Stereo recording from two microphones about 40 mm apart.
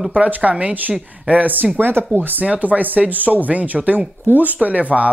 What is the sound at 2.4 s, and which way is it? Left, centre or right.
Speech, right.